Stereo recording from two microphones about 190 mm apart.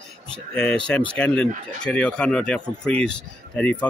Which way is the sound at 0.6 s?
5° left (ahead or behind).